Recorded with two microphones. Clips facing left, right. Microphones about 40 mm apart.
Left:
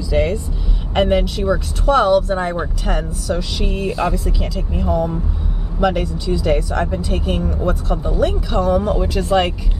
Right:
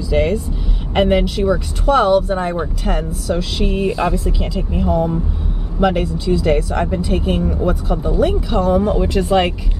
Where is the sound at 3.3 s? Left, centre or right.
Centre.